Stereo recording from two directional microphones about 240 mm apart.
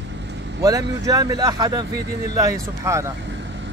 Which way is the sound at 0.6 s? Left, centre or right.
Centre.